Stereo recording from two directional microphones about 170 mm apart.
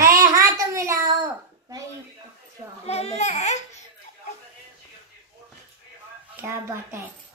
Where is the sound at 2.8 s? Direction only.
40° left (ahead or behind).